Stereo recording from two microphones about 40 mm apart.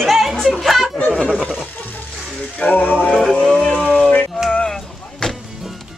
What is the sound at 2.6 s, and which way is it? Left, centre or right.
Music, left.